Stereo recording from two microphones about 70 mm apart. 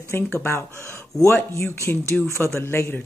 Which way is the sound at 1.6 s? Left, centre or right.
Left.